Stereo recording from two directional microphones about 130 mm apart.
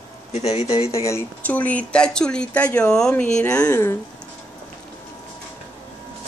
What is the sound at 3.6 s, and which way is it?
Speech, 20° left (ahead or behind).